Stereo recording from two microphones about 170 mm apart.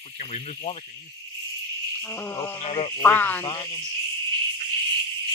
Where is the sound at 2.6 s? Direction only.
35° left (ahead or behind).